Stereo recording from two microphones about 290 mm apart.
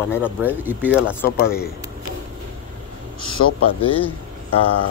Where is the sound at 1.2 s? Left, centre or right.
Left.